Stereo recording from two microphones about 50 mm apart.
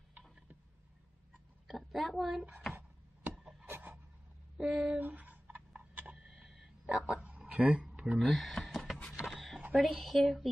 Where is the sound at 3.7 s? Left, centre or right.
Right.